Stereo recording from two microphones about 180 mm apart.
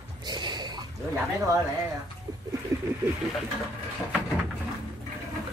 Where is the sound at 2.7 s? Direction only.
15° right (ahead or behind).